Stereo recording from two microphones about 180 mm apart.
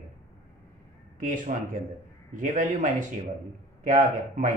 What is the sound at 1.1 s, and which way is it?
Speech, 45° right (ahead or behind).